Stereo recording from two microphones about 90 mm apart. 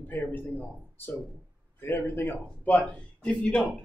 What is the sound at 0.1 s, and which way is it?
Speech, 20° left (ahead or behind).